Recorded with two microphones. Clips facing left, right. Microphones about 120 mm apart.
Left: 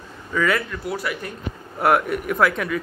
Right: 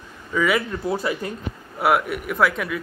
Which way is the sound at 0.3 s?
5° right (ahead or behind).